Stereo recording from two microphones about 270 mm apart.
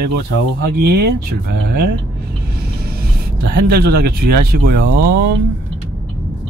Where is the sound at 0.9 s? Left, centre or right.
Right.